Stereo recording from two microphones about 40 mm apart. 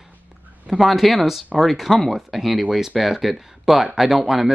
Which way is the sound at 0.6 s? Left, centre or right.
Centre.